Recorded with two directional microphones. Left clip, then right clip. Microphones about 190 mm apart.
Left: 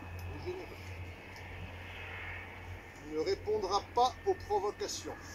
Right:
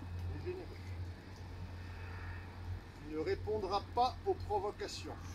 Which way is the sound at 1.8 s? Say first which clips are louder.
Left 8 dB; 55° right (ahead or behind).